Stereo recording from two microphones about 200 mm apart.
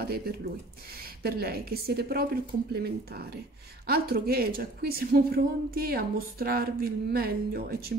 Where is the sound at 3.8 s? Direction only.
50° right (ahead or behind).